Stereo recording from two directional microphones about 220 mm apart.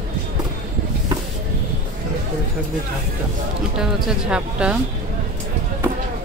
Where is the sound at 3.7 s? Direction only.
5° right (ahead or behind).